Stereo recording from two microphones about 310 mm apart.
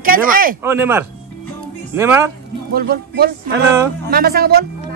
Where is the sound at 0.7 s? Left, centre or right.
Centre.